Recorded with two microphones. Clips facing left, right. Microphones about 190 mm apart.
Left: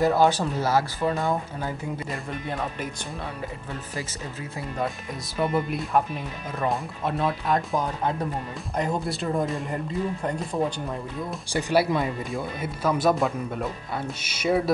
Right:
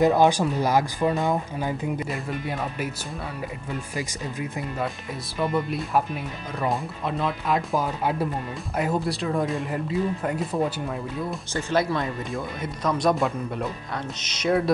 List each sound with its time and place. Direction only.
0.0 s speech: 15° right (ahead or behind)
2.0 s speech: 5° right (ahead or behind)
3.9 s speech: 15° right (ahead or behind)
5.4 s speech: centre (ahead or behind)
11.5 s speech: 10° left (ahead or behind)
14.2 s music: 5° left (ahead or behind)